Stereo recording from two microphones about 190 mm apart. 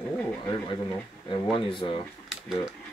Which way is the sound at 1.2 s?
25° left (ahead or behind).